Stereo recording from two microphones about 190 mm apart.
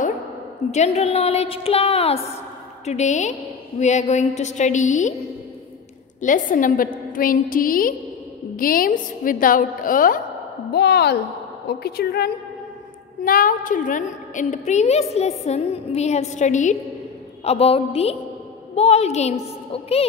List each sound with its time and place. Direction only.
0.7 s a woman's voice: 35° left (ahead or behind)
6.2 s a woman's voice: 45° left (ahead or behind)
10.7 s a woman's voice: 60° left (ahead or behind); by 20.1 s 30° left (ahead or behind)